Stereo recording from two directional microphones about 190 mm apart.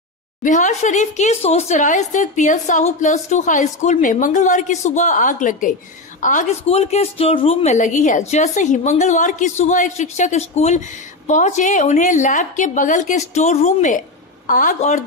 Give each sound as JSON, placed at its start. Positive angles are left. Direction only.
{"t": 0.4, "sound": "speech", "side_deg": 40}